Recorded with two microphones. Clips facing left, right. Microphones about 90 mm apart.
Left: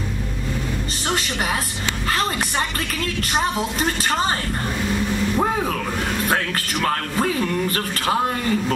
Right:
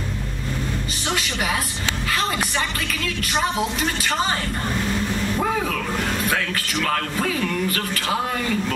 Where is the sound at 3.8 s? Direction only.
40° left (ahead or behind).